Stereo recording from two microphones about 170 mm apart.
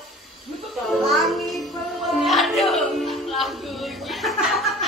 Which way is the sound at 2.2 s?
Centre (ahead or behind).